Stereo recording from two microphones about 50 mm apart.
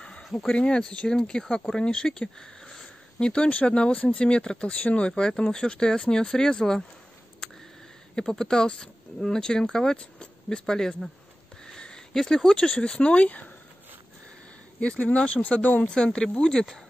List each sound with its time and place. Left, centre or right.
0.3 s speech: centre
0.6 s speech: centre
8.2 s speech: centre
11.6 s a sound: centre
12.2 s speech: centre; by 13.5 s left
14.8 s speech: left
15.9 s speech: centre